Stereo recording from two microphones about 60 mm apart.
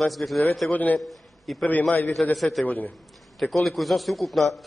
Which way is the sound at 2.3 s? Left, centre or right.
Centre.